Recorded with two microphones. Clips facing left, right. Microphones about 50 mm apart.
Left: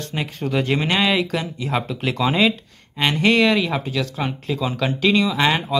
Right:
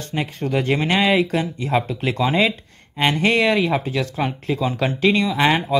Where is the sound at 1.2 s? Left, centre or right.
Centre.